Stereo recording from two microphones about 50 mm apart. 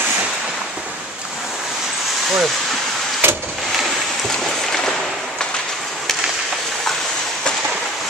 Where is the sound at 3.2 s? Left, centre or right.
Right.